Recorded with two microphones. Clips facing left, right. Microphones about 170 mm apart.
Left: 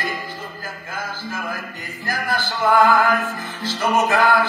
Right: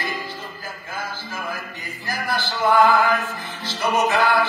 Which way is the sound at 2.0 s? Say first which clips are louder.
Left 2 dB; 50° left (ahead or behind).